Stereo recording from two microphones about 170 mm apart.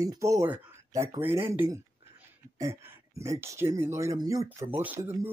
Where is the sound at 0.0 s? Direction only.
20° right (ahead or behind).